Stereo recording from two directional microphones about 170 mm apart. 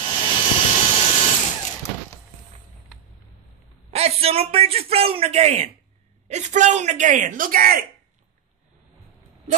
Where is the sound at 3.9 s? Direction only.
40° right (ahead or behind); by 7.8 s 60° right (ahead or behind).